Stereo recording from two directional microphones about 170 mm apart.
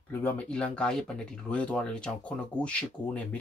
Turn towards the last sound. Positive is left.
turn(degrees=5)  # may be behind; listen again after turning